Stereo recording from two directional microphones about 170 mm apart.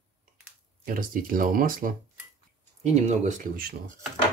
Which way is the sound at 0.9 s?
55° right (ahead or behind).